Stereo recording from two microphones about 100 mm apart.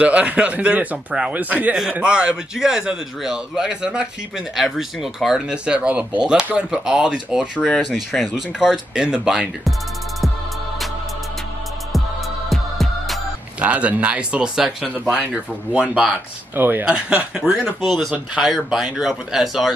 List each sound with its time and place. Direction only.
0.0 s a man's voice: 10° right (ahead or behind)
7.6 s speech: 5° left (ahead or behind)
12.4 s music: centre (ahead or behind)
13.6 s a man's voice: 15° right (ahead or behind)
16.5 s speech: 20° right (ahead or behind)
16.8 s a man's voice: 10° right (ahead or behind)